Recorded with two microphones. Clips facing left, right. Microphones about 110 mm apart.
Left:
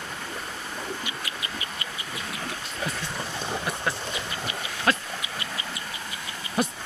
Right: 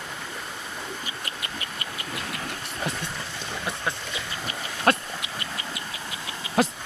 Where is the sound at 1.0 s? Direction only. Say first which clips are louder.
Left 1 dB; 50° right (ahead or behind).